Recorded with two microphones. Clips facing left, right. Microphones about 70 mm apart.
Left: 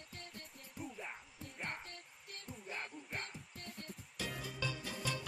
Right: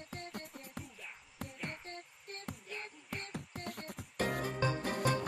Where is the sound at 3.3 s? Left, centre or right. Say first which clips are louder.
Right 7 dB; right.